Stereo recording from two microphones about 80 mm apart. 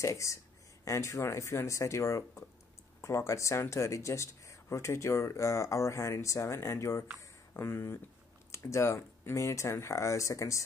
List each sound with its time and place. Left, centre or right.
0.0 s speech: left